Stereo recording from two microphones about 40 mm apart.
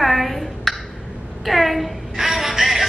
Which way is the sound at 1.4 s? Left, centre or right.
Centre.